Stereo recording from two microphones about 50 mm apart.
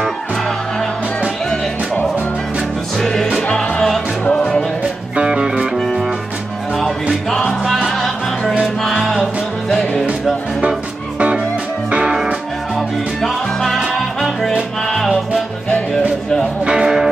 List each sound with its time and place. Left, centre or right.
3.0 s music: centre
4.3 s music: left
5.1 s music: centre
7.6 s music: centre
10.7 s music: centre
12.7 s music: centre
16.6 s music: centre